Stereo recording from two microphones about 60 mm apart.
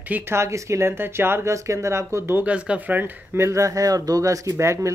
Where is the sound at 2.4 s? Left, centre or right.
Centre.